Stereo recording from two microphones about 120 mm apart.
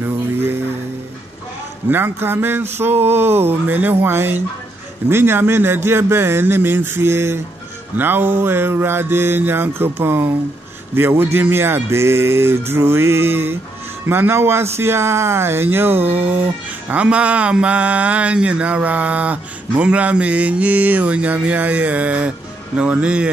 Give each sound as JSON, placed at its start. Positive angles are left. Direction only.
{"t": 0.0, "sound": "music", "side_deg": -20}
{"t": 1.9, "sound": "a sound", "side_deg": -20}
{"t": 16.9, "sound": "mantra", "side_deg": -10}